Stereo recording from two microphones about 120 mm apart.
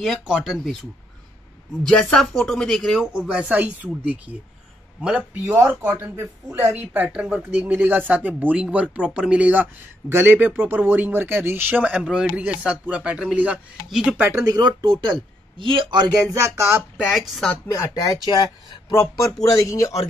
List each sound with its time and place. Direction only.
0.0 s speech: centre (ahead or behind)
1.8 s speech: 5° left (ahead or behind)
3.3 s speech: 10° right (ahead or behind)
14.3 s speech: 30° right (ahead or behind)
17.1 s speech: 5° left (ahead or behind)
17.6 s speech: 25° left (ahead or behind)